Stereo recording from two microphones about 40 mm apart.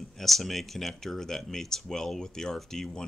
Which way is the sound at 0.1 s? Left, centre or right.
Centre.